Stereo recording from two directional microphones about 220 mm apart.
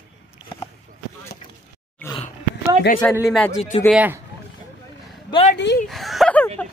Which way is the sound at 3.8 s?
5° right (ahead or behind).